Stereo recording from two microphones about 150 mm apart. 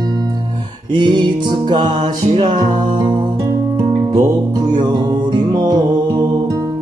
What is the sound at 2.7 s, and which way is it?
Music, 30° right (ahead or behind).